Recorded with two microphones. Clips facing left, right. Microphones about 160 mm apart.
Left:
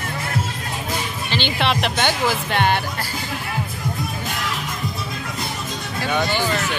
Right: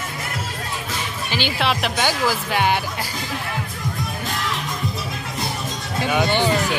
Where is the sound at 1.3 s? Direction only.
5° right (ahead or behind).